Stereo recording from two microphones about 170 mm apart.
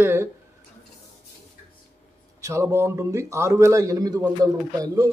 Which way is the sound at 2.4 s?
15° right (ahead or behind).